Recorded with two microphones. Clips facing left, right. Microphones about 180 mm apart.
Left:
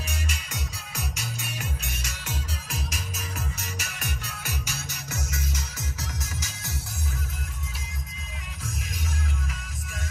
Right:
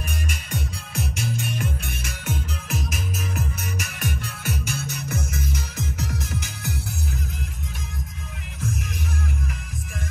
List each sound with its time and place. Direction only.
0.3 s music: 55° right (ahead or behind)
4.0 s music: 55° right (ahead or behind)